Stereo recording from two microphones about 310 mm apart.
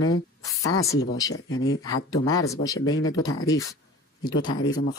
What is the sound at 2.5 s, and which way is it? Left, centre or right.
Speech, centre.